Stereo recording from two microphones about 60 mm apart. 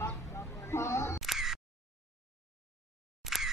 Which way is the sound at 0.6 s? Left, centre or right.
Left.